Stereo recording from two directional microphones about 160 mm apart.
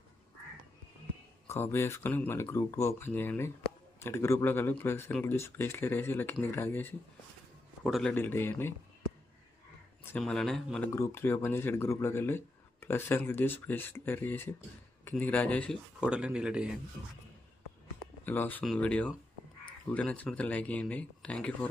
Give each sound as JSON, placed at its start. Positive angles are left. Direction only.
{"t": 1.5, "sound": "speech", "side_deg": 15}
{"t": 7.8, "sound": "a man's voice", "side_deg": 0}
{"t": 8.1, "sound": "speech", "side_deg": 15}
{"t": 10.1, "sound": "speech", "side_deg": 5}
{"t": 10.9, "sound": "speech", "side_deg": 20}
{"t": 16.0, "sound": "speech", "side_deg": -5}
{"t": 18.2, "sound": "speech", "side_deg": 10}